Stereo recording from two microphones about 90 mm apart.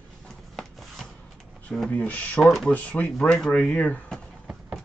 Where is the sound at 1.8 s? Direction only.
15° left (ahead or behind).